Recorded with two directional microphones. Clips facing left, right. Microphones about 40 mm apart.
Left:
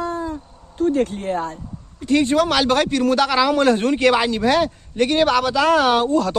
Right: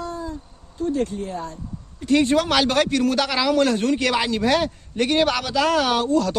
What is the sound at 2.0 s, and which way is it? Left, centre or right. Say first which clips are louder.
A man's voice: left 1 dB; centre.